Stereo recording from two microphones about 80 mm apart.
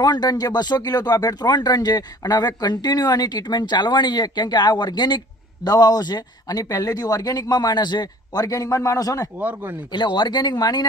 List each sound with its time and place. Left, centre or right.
0.0 s speech: left
8.5 s a man's voice: left
9.4 s speech: right
9.9 s speech: left